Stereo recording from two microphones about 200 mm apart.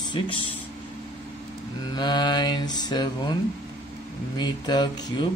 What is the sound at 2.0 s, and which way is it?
Speech, 20° left (ahead or behind).